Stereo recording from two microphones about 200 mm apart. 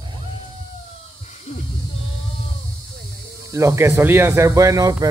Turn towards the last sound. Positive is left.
turn(degrees=-15)  # may be behind; listen again after turning